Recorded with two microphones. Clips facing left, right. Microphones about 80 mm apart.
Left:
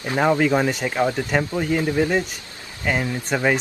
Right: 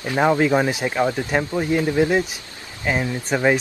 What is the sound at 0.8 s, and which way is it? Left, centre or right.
Speech, right.